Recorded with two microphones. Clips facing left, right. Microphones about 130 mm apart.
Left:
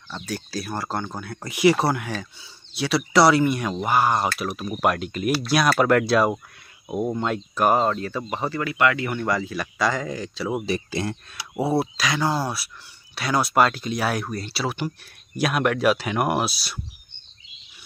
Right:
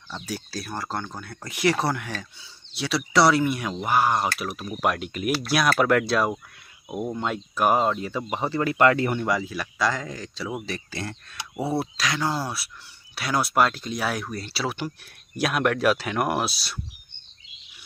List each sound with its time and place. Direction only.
0.1 s speech: 5° right (ahead or behind)
8.6 s speech: 40° right (ahead or behind)
9.2 s speech: 10° right (ahead or behind)
10.6 s speech: 15° left (ahead or behind)
11.8 s speech: 5° left (ahead or behind)